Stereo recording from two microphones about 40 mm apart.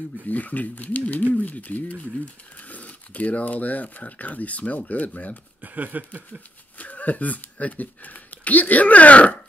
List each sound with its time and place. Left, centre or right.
0.3 s speech: left
5.6 s a sound: right
6.8 s speech: left